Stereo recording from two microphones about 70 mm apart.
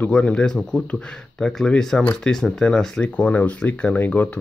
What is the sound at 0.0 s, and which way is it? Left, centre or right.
Speech, centre.